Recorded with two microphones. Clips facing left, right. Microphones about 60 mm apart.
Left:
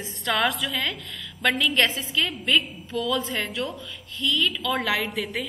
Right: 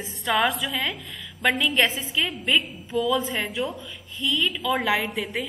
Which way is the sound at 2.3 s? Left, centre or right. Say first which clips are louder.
Even; centre.